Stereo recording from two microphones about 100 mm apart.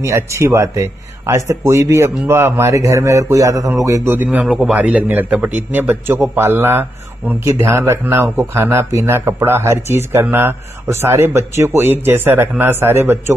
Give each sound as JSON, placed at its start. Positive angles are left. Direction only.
{"t": 0.0, "sound": "speech", "side_deg": -30}
{"t": 4.1, "sound": "a man's voice", "side_deg": -15}